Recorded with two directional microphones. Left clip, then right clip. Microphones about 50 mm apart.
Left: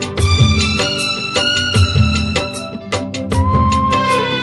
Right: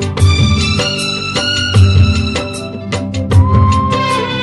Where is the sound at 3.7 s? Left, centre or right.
Right.